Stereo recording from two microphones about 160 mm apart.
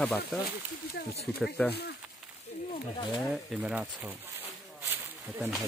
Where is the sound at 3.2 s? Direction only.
5° right (ahead or behind).